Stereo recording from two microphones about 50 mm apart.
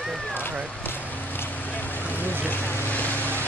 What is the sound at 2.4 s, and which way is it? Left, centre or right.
Vehicle, left.